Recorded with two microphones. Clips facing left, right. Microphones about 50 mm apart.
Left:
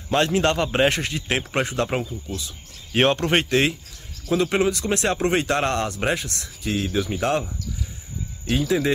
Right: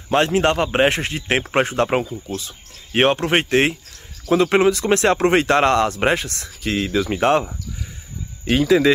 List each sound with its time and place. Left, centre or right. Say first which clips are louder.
0.1 s a man's voice: right 3 dB; right
2.2 s speech: right 4 dB; right
2.9 s speech: right 2 dB; right
3.4 s a man's voice: right 3 dB; right
4.3 s speech: right 5 dB; right
8.5 s speech: right 7 dB; right